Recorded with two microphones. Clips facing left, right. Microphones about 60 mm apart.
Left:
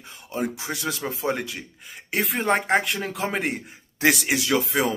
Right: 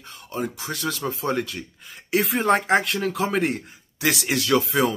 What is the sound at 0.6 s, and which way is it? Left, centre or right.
Speech, centre.